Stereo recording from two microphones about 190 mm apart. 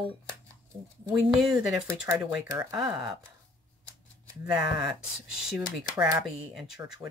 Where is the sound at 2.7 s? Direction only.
5° right (ahead or behind).